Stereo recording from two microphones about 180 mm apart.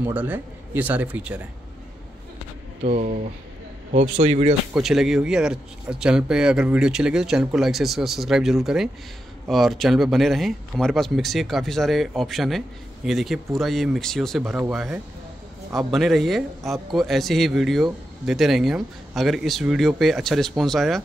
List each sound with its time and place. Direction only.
0.0 s speech: 10° right (ahead or behind)
2.8 s speech: 35° right (ahead or behind)
4.7 s speech: centre (ahead or behind)
14.4 s speech: 10° right (ahead or behind)